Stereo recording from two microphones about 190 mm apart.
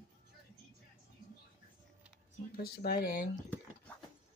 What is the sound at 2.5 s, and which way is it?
Speech, 55° left (ahead or behind).